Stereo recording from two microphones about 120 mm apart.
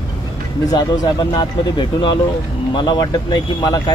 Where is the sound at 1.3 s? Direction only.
40° left (ahead or behind).